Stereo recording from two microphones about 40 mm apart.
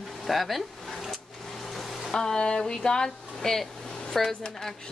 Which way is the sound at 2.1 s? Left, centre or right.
Centre.